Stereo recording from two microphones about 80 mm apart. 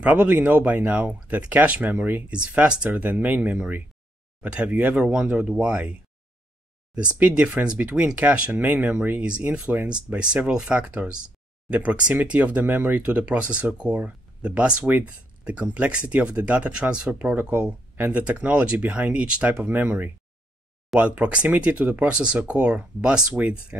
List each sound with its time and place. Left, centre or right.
0.0 s speech: centre
7.2 s speech: centre